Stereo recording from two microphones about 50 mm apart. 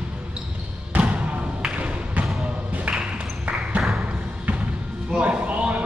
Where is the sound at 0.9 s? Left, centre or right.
Right.